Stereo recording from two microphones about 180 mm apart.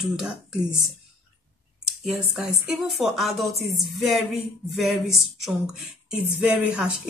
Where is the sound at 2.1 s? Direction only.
5° right (ahead or behind).